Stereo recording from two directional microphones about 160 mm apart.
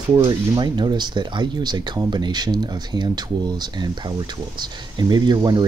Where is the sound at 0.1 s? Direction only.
25° right (ahead or behind).